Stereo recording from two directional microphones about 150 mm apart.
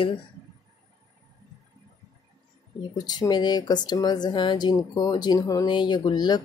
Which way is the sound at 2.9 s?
25° left (ahead or behind).